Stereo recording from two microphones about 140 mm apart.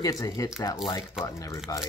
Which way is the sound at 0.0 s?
25° left (ahead or behind).